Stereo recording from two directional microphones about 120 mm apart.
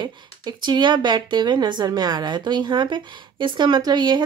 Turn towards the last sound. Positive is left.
turn(degrees=-40)  # may be behind; listen again after turning